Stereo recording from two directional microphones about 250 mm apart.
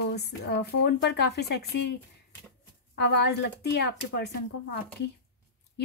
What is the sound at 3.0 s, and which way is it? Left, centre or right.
Speech, left.